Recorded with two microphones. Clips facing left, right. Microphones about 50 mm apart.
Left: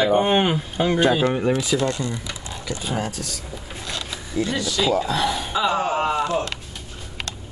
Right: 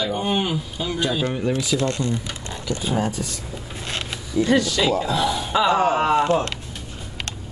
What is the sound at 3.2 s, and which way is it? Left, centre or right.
Speech, centre.